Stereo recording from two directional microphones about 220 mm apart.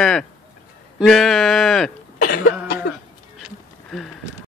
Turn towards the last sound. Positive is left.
turn(degrees=0)  # may be behind; listen again after turning